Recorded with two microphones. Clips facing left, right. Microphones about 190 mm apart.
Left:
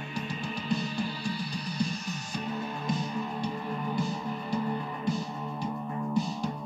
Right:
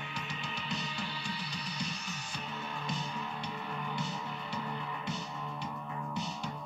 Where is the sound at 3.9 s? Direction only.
35° left (ahead or behind).